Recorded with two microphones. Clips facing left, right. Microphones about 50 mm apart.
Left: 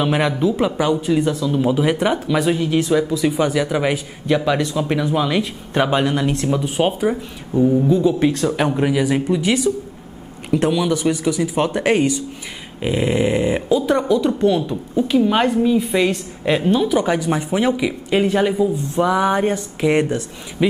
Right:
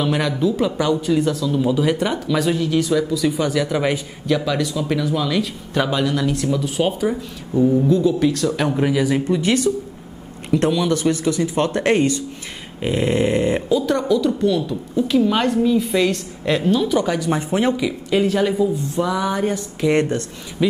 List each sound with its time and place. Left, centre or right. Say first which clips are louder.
0.0 s a man's voice: left 2 dB; left
4.5 s a man's voice: left 2 dB; left
8.6 s a woman's voice: right 1 dB; centre
12.8 s a sound: even; centre
13.7 s a man's voice: left 1 dB; centre
18.1 s a man's voice: left 1 dB; left